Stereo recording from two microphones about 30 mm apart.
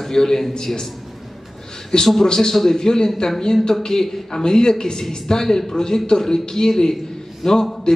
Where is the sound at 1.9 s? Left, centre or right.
Left.